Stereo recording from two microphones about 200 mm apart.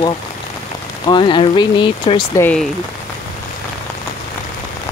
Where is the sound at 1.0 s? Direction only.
25° left (ahead or behind).